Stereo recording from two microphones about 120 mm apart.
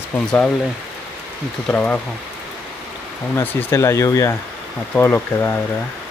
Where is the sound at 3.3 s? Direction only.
25° left (ahead or behind).